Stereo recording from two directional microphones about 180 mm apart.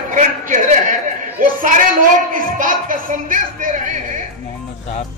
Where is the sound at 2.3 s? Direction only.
50° right (ahead or behind).